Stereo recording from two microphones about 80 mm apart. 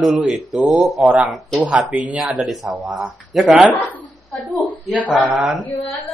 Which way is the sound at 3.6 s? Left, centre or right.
Left.